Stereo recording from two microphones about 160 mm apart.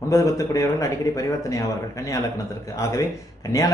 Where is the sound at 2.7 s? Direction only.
20° left (ahead or behind).